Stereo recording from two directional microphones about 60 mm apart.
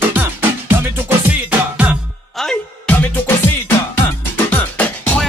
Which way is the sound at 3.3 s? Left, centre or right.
Left.